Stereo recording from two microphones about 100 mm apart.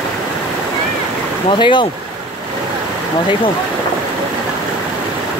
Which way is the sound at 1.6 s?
55° left (ahead or behind).